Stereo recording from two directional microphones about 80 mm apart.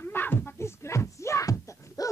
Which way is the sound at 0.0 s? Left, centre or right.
Left.